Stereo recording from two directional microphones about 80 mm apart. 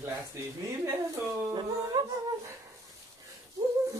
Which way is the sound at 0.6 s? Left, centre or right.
Right.